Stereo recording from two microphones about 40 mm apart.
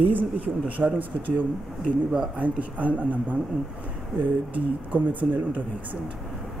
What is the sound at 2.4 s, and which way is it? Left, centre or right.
A man's voice, right.